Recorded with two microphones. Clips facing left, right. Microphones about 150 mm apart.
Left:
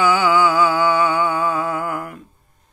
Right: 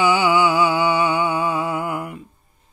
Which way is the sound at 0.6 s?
20° right (ahead or behind).